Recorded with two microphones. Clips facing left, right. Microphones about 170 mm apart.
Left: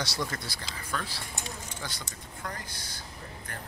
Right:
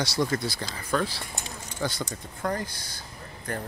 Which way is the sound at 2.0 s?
50° right (ahead or behind).